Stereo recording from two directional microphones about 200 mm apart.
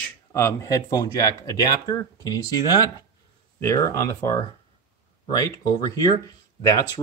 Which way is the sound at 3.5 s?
15° left (ahead or behind).